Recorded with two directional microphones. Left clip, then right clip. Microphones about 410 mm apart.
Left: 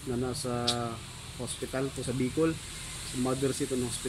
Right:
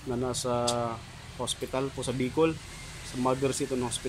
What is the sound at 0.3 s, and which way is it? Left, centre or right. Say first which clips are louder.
Speech: right 5 dB; centre.